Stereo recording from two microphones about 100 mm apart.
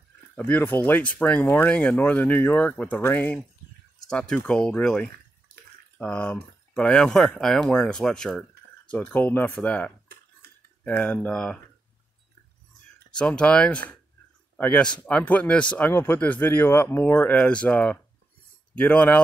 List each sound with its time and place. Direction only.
0.4 s speech: 20° left (ahead or behind)
4.1 s speech: 5° left (ahead or behind)
13.1 s speech: 10° left (ahead or behind)